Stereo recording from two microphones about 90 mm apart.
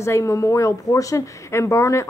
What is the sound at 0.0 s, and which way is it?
Speech, 35° left (ahead or behind).